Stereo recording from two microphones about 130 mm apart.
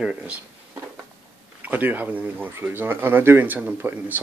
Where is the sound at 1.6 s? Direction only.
15° right (ahead or behind).